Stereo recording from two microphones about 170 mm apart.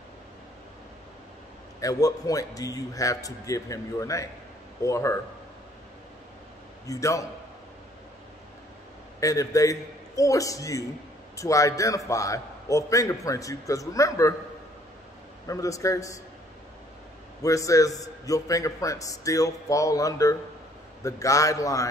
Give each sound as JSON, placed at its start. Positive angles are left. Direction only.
{"t": 1.8, "sound": "a man's voice", "side_deg": 20}
{"t": 6.9, "sound": "a man's voice", "side_deg": 20}
{"t": 9.2, "sound": "a man's voice", "side_deg": 20}
{"t": 15.4, "sound": "a man's voice", "side_deg": 20}
{"t": 17.4, "sound": "a man's voice", "side_deg": 20}